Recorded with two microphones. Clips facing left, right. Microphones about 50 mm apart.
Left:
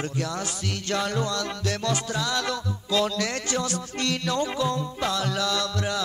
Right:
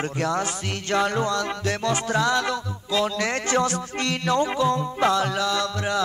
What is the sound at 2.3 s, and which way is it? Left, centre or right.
Music, centre.